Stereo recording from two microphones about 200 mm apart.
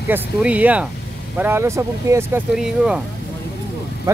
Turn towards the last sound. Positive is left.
turn(degrees=-15)  # may be behind; listen again after turning